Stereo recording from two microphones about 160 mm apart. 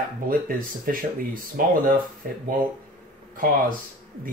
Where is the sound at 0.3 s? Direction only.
60° right (ahead or behind).